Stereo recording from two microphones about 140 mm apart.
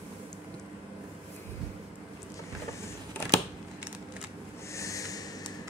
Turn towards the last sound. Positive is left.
turn(degrees=25)  # may be behind; listen again after turning